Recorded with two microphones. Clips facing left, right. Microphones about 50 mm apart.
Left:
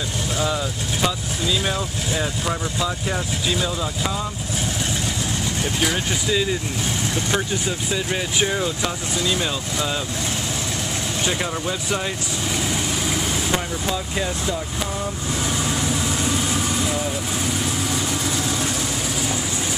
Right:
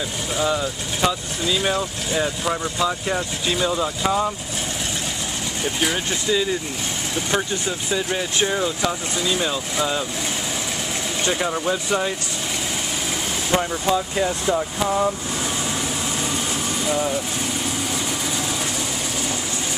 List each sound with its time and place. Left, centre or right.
0.4 s speech: centre
5.6 s speech: centre
11.4 s speech: centre
13.6 s speech: centre
16.8 s vehicle: centre